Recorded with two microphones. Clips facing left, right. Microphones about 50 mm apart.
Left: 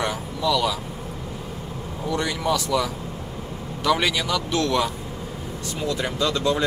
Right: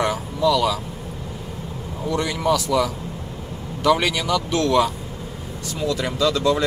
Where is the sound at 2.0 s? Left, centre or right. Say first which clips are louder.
Right 3 dB; centre.